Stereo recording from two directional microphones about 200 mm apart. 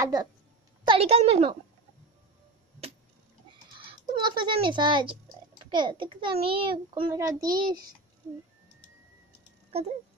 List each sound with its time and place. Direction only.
0.0 s a child's voice: 20° right (ahead or behind)
0.8 s a child's voice: 30° right (ahead or behind)
3.7 s a child's voice: 20° right (ahead or behind)
9.7 s a sound: 30° right (ahead or behind)